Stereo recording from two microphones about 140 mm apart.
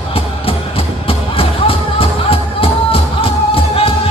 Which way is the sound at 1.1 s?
45° left (ahead or behind).